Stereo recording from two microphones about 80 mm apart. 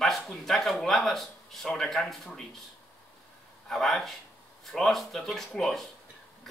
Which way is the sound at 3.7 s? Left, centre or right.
Centre.